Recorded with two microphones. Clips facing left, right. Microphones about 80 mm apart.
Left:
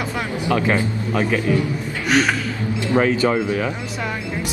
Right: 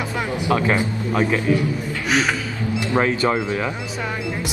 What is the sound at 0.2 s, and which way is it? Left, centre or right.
Speech, right.